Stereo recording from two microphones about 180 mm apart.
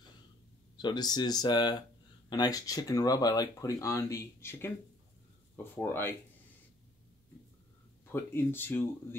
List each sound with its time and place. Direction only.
0.7 s speech: 25° left (ahead or behind)
8.1 s speech: 10° left (ahead or behind)